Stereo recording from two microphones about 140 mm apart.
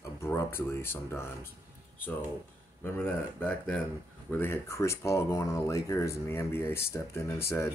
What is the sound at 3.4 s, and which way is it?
Speech, 10° left (ahead or behind).